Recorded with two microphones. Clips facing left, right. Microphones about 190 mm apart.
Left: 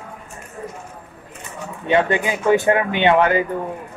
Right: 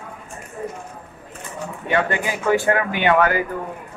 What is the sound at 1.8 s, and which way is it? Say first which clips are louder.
Speech: left 4 dB; 20° left (ahead or behind).